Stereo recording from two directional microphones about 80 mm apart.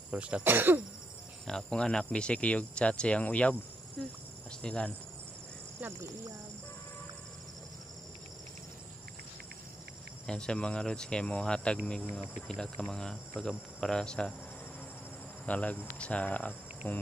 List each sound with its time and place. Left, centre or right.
0.1 s speech: centre
1.5 s speech: centre
4.5 s cricket: centre
10.2 s speech: centre
15.4 s speech: centre